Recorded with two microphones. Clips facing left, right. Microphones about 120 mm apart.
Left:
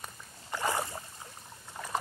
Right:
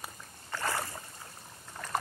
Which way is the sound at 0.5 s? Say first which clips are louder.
Left 2 dB; 15° left (ahead or behind).